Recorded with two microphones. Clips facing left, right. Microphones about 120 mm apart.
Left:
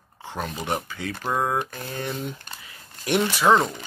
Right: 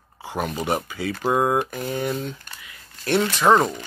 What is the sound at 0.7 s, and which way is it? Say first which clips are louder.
Speech: right 4 dB; 5° right (ahead or behind).